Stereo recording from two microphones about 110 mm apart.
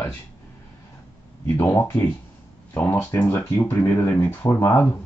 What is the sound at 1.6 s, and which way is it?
Speech, 20° left (ahead or behind).